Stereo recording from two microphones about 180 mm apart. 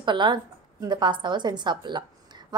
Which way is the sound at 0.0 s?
25° right (ahead or behind).